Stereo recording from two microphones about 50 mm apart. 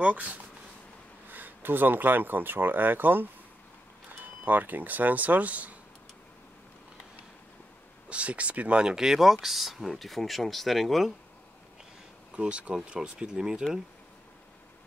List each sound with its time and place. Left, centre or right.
0.0 s speech: right
8.1 s speech: right; by 11.1 s centre
12.3 s speech: right